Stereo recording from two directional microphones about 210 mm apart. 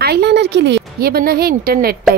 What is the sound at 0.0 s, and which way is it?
Speech, 50° right (ahead or behind).